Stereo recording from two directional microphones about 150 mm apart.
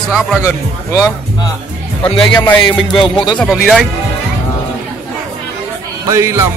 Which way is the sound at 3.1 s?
30° left (ahead or behind).